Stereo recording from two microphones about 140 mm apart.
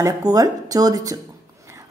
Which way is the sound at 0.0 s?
25° right (ahead or behind).